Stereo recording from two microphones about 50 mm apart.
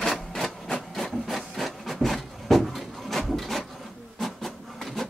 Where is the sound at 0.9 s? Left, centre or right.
Centre.